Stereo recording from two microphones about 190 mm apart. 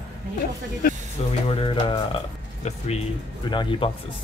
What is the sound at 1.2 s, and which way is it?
Speech, 35° left (ahead or behind).